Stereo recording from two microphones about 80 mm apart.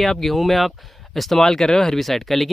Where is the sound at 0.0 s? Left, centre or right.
Centre.